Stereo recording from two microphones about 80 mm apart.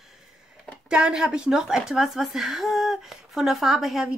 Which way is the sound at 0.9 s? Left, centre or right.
Centre.